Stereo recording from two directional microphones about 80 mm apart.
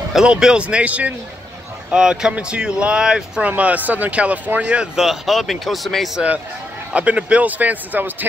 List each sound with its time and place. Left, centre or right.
0.1 s speech: centre
6.9 s speech: centre